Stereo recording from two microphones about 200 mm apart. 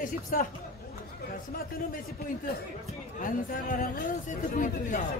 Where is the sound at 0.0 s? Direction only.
45° left (ahead or behind).